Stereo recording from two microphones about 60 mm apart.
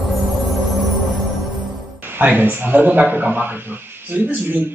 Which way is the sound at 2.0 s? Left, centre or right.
Right.